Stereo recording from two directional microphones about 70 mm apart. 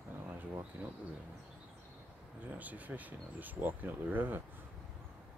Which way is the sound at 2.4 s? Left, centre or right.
Right.